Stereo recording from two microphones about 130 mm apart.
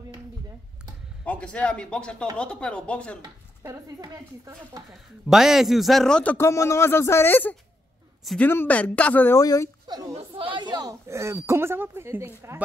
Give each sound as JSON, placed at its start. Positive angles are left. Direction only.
{"t": 1.2, "sound": "speech", "side_deg": 10}
{"t": 4.0, "sound": "speech", "side_deg": -30}
{"t": 4.9, "sound": "a man's voice", "side_deg": -5}
{"t": 6.3, "sound": "speech", "side_deg": 20}
{"t": 9.4, "sound": "speech", "side_deg": 30}
{"t": 10.1, "sound": "speech", "side_deg": -45}